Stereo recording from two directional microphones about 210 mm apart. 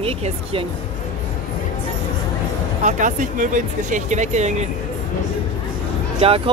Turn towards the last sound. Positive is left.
turn(degrees=-25)  # may be behind; listen again after turning